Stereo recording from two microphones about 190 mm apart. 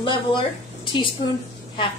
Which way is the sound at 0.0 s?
25° left (ahead or behind).